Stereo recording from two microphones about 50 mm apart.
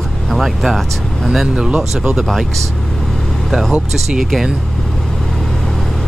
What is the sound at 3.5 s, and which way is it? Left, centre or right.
Speech, centre.